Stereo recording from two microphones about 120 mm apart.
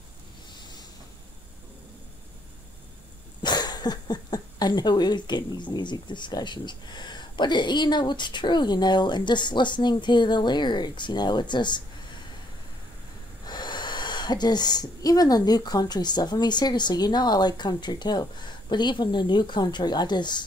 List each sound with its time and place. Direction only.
3.4 s speech: 35° left (ahead or behind)
13.5 s speech: 35° left (ahead or behind)